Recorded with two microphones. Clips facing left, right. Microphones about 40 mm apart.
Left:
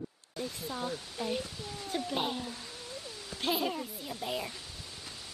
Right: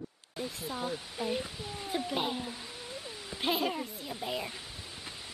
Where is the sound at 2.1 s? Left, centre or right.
Centre.